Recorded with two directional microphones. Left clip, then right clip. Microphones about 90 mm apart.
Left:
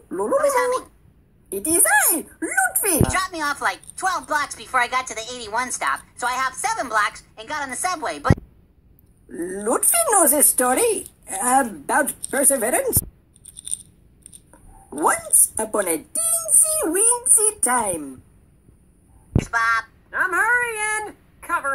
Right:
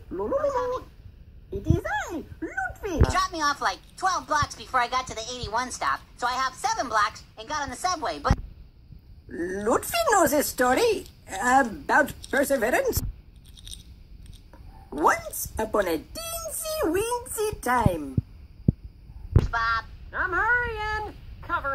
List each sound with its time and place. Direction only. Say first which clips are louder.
0.1 s dog: left 6 dB; 10° left (ahead or behind)
0.4 s cat: left 8 dB; 20° left (ahead or behind)
1.5 s speech: left 9 dB; 15° left (ahead or behind)
9.3 s speech: left 2 dB; 5° right (ahead or behind)
14.5 s a sound: left 2 dB; 15° right (ahead or behind)
15.1 s speech: left 6 dB; 5° right (ahead or behind)
19.4 s speech: left 6 dB; 15° left (ahead or behind)